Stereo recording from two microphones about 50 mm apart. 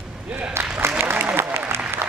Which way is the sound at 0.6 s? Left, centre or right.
Right.